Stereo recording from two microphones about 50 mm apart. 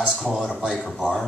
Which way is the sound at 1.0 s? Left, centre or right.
Centre.